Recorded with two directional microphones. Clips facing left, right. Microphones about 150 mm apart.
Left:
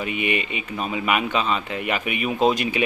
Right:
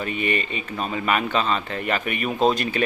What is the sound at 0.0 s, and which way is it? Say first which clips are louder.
Speech: even; 10° left (ahead or behind).